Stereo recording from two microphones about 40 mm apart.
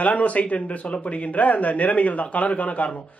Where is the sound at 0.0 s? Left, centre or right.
Left.